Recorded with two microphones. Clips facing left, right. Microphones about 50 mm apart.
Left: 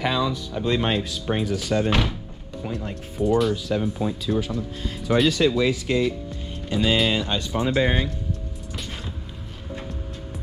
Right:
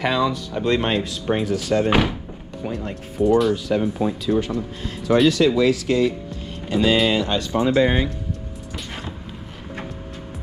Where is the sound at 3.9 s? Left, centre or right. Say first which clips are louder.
Right 4 dB; right.